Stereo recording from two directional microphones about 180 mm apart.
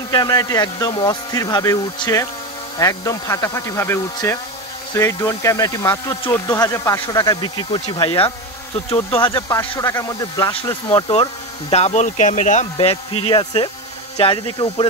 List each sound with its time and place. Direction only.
0.1 s speech: 20° left (ahead or behind)
9.3 s speech: 15° left (ahead or behind); by 12.6 s 45° left (ahead or behind)
12.7 s speech: 30° left (ahead or behind)